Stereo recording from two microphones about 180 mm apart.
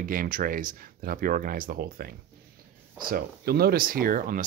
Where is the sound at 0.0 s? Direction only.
50° right (ahead or behind).